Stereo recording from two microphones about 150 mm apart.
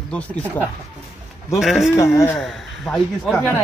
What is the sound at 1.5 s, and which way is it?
Speech, centre (ahead or behind).